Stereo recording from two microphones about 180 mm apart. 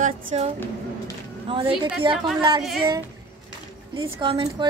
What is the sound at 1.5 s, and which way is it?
Speech, 25° right (ahead or behind).